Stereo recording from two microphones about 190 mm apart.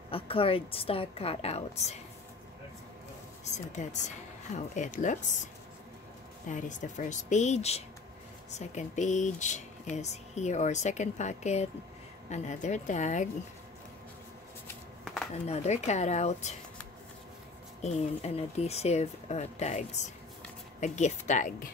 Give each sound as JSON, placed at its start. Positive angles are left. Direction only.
{"t": 0.1, "sound": "a woman's voice", "side_deg": 30}
{"t": 3.5, "sound": "speech", "side_deg": 40}
{"t": 6.5, "sound": "speech", "side_deg": 40}
{"t": 15.4, "sound": "speech", "side_deg": 35}
{"t": 17.8, "sound": "speech", "side_deg": 35}